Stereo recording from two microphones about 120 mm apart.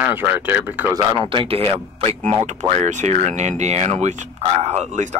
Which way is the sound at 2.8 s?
80° right.